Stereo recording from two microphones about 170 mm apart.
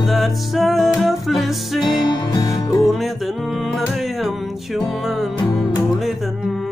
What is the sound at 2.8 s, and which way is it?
Music, centre (ahead or behind).